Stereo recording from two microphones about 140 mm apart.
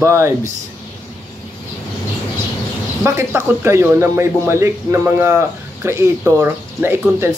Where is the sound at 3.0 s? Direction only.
15° right (ahead or behind).